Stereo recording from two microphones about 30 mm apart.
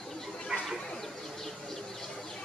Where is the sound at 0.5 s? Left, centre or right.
Right.